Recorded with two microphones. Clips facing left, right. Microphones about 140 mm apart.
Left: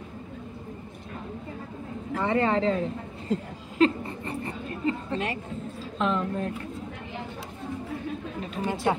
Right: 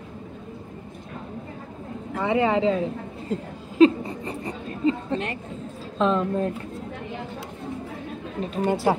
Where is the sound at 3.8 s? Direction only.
15° right (ahead or behind).